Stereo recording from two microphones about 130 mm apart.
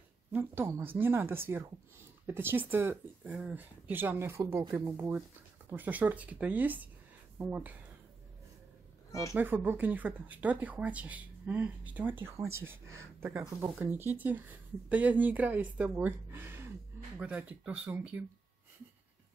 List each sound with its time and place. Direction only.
0.3 s speech: 15° right (ahead or behind)
9.4 s speech: 15° right (ahead or behind)